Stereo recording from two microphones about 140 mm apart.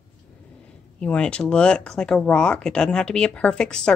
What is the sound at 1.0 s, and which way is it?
Speech, 10° left (ahead or behind).